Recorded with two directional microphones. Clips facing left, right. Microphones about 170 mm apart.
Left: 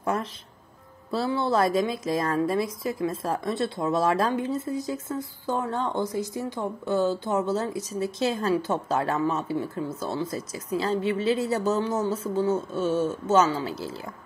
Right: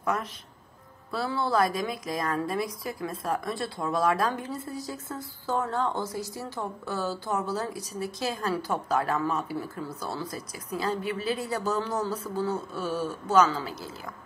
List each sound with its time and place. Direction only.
0.0 s a woman's voice: 30° left (ahead or behind)